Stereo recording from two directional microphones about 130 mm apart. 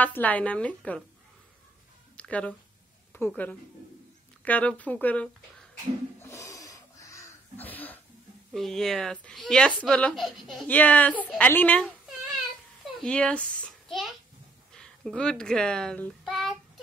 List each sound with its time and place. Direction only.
0.0 s speech: 10° left (ahead or behind)
2.1 s a sound: 10° left (ahead or behind)
3.1 s a woman's voice: 15° left (ahead or behind)
6.2 s a sound: 25° left (ahead or behind)
7.5 s throat clearing: 15° left (ahead or behind)
8.5 s a woman's voice: centre (ahead or behind)
10.7 s speech: 10° left (ahead or behind)
13.0 s a child's voice: 10° left (ahead or behind)